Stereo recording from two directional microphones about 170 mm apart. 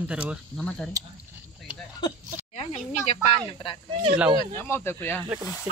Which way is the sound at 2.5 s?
45° left (ahead or behind).